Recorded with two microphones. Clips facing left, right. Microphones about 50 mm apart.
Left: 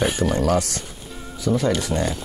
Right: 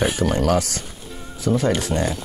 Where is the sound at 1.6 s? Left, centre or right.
Right.